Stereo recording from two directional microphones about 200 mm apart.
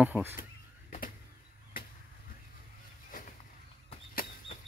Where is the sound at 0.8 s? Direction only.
45° left (ahead or behind).